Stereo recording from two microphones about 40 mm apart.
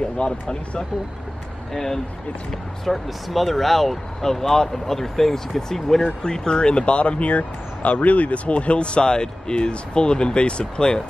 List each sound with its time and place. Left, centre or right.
0.2 s speech: left
1.7 s speech: centre